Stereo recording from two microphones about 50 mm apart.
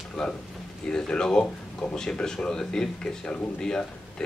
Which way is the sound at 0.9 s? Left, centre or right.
Centre.